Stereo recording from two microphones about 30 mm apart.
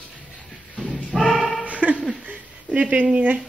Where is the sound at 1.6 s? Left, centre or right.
Right.